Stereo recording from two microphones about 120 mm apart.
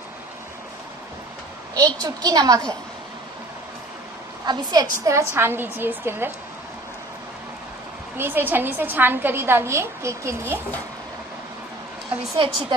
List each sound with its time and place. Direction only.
1.8 s a woman's voice: 35° right (ahead or behind)
4.5 s a woman's voice: 35° right (ahead or behind)
5.0 s a woman's voice: 25° right (ahead or behind)
8.2 s a woman's voice: 15° right (ahead or behind)
12.4 s a woman's voice: 45° right (ahead or behind)